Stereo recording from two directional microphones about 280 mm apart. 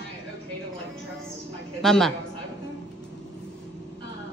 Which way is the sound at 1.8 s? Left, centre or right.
Centre.